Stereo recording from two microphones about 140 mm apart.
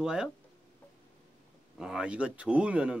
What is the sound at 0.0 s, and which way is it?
Speech, 5° right (ahead or behind).